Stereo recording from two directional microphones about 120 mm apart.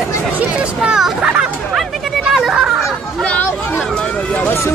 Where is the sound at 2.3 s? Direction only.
Centre (ahead or behind).